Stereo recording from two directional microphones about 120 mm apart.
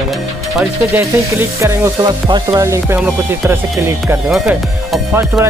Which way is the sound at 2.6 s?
25° right (ahead or behind).